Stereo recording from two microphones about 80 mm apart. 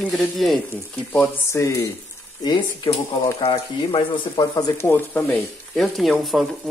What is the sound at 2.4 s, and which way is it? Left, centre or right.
Speech, left.